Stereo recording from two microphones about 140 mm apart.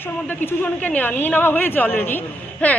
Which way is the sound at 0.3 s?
15° left (ahead or behind).